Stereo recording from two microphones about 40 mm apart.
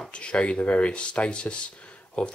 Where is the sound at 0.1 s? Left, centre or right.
Left.